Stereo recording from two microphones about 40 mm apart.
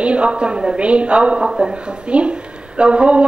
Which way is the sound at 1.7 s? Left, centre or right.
Right.